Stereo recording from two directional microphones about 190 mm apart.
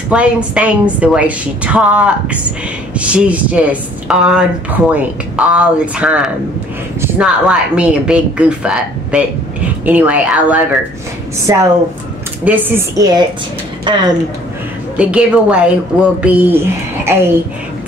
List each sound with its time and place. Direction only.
0.1 s a woman's voice: 5° right (ahead or behind)
11.5 s a woman's voice: 20° right (ahead or behind)
15.0 s a woman's voice: 5° right (ahead or behind)